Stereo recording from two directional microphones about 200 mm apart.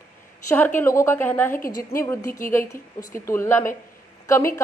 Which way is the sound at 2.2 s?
40° left (ahead or behind).